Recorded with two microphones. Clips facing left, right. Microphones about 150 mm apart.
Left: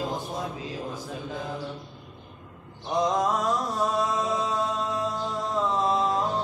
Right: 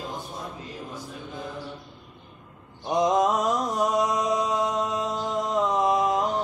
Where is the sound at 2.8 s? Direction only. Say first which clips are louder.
Right 3 dB; 20° right (ahead or behind).